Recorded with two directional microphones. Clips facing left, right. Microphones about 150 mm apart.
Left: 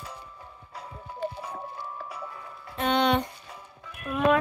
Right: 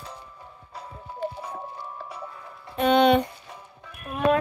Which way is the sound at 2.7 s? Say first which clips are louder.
Right 5 dB; 60° right (ahead or behind).